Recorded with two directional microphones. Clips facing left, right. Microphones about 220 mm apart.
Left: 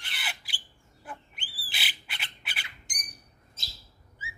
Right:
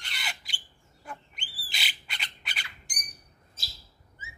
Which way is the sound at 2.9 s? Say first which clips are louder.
Even; 20° left (ahead or behind).